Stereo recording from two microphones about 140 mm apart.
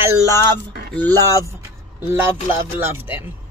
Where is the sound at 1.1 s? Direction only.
20° right (ahead or behind).